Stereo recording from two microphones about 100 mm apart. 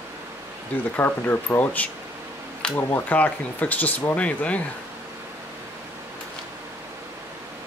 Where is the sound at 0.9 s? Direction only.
20° left (ahead or behind).